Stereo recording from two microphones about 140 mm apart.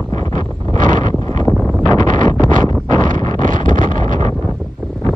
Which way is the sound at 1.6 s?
5° left (ahead or behind).